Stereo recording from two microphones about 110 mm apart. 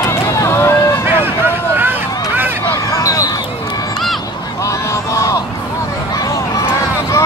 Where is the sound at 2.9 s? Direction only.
30° left (ahead or behind).